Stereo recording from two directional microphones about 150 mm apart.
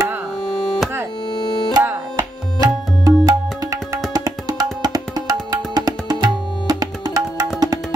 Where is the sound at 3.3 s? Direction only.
20° right (ahead or behind).